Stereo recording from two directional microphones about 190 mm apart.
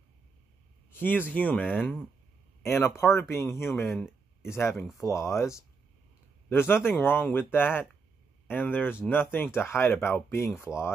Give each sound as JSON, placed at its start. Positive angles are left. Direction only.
{"t": 0.9, "sound": "speech", "side_deg": 10}